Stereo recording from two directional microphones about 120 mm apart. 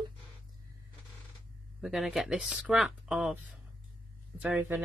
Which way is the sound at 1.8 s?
5° right (ahead or behind).